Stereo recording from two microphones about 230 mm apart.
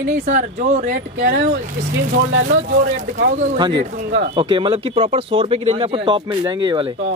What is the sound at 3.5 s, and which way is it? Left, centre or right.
Speech, centre.